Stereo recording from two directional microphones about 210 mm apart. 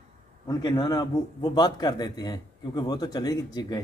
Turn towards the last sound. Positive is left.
turn(degrees=20)  # may be behind; listen again after turning